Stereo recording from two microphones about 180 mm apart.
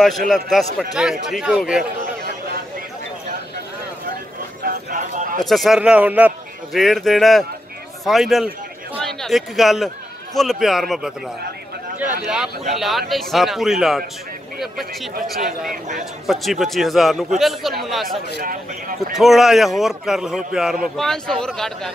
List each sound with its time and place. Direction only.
0.3 s a man's voice: centre (ahead or behind)
4.6 s a sound: 45° right (ahead or behind)
5.4 s a man's voice: centre (ahead or behind)
15.7 s a man's voice: 40° right (ahead or behind)
16.3 s a man's voice: centre (ahead or behind)
18.4 s speech: 50° right (ahead or behind)
19.1 s a man's voice: centre (ahead or behind)